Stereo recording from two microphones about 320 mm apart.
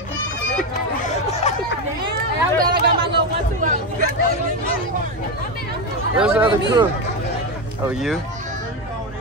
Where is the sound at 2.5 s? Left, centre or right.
Right.